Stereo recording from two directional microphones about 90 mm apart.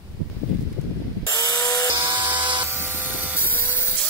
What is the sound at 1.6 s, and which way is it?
Wood, 35° left (ahead or behind).